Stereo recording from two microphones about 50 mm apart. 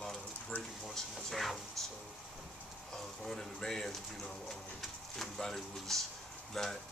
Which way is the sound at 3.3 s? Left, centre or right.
Centre.